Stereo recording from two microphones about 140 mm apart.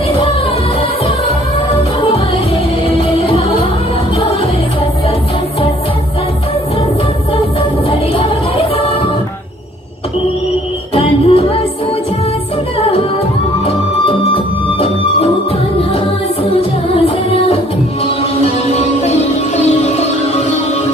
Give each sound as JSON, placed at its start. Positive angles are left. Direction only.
{"t": 3.0, "sound": "music", "side_deg": 45}
{"t": 8.1, "sound": "music", "side_deg": 45}
{"t": 11.0, "sound": "music", "side_deg": 45}
{"t": 12.7, "sound": "music", "side_deg": 45}
{"t": 16.9, "sound": "music", "side_deg": 45}